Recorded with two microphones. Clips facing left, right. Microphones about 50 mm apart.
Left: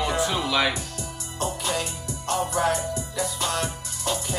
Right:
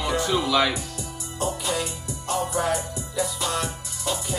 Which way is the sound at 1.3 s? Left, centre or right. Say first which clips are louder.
Right 1 dB; left.